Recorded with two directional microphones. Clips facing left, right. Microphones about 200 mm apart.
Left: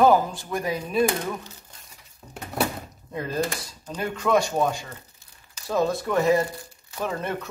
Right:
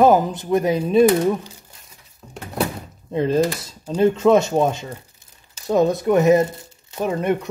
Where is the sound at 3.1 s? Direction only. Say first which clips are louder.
Right 9 dB; 25° right (ahead or behind).